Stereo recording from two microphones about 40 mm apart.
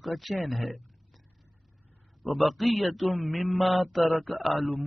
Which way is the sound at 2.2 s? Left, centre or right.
Centre.